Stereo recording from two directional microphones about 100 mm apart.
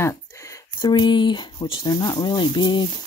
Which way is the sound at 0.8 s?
50° left (ahead or behind).